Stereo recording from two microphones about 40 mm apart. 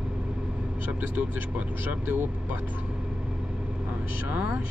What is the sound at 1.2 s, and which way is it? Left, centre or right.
Speech, right.